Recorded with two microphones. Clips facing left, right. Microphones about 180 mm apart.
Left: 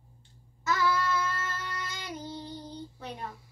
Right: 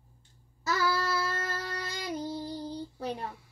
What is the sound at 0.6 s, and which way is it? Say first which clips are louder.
Child singing: left 1 dB; 35° right (ahead or behind).